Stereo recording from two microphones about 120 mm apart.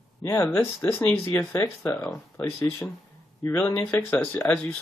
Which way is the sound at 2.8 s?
10° left (ahead or behind).